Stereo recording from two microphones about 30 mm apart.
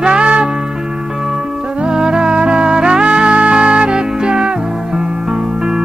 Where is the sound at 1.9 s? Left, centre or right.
Right.